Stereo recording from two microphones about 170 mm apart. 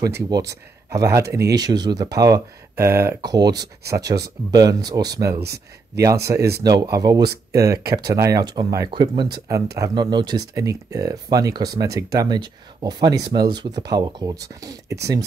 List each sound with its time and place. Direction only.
0.0 s speech: 20° right (ahead or behind)
6.6 s speech: 25° right (ahead or behind)